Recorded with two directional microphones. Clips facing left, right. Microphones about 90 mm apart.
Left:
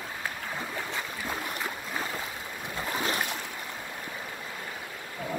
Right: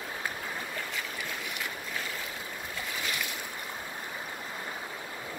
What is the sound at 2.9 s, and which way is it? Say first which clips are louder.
Boat: left 6 dB; 40° left (ahead or behind).